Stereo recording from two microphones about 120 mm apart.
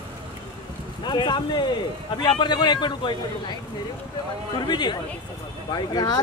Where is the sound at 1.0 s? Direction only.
40° left (ahead or behind).